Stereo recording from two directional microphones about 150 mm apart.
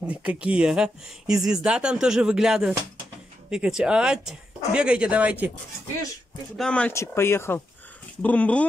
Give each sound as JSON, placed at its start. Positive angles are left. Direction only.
{"t": 0.0, "sound": "speech", "side_deg": -5}
{"t": 6.5, "sound": "speech", "side_deg": 5}
{"t": 6.9, "sound": "speech", "side_deg": 15}